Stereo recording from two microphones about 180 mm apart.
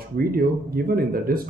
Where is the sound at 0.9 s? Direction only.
55° right (ahead or behind).